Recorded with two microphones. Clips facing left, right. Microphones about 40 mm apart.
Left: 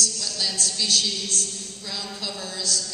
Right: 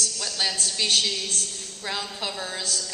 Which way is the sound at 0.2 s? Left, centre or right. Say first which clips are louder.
Right 1 dB; right.